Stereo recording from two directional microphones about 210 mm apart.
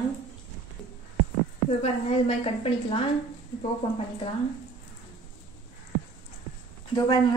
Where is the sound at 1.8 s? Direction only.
30° left (ahead or behind).